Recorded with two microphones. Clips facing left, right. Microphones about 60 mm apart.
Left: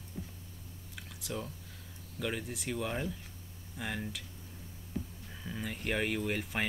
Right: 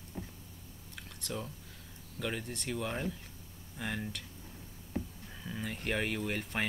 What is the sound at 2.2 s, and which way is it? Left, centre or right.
Speech, centre.